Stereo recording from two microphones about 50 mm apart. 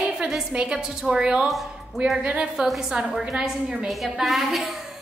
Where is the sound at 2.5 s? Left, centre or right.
Centre.